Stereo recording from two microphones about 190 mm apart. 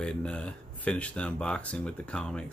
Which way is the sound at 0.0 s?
5° left (ahead or behind).